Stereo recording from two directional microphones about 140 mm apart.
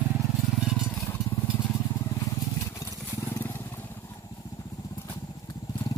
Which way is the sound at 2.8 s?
20° left (ahead or behind).